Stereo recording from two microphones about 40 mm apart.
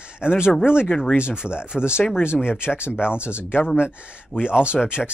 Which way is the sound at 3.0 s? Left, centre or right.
Left.